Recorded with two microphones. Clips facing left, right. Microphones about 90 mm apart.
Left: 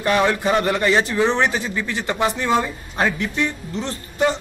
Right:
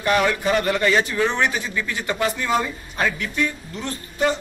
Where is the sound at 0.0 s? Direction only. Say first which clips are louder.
Left 1 dB; 25° left (ahead or behind).